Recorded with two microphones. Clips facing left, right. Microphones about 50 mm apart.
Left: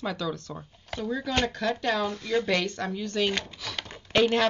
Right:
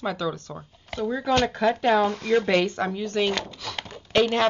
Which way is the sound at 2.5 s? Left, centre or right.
Right.